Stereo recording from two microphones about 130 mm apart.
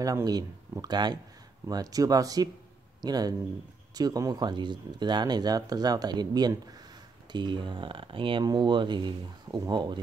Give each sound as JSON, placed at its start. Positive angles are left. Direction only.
{"t": 0.0, "sound": "speech", "side_deg": -30}